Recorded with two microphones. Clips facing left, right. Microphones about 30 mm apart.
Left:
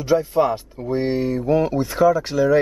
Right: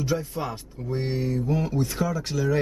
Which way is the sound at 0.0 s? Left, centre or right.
Centre.